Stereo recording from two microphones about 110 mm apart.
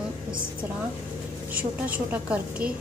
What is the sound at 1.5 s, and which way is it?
A woman's voice, 15° right (ahead or behind).